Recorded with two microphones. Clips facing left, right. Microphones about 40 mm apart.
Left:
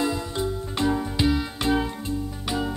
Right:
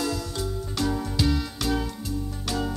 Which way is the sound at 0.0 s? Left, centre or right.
Left.